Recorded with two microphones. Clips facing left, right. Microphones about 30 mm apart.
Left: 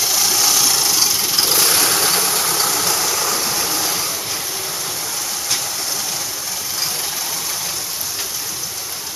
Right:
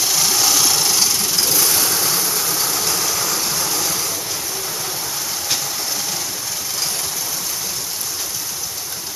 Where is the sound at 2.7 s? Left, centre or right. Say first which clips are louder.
Left 2 dB; centre.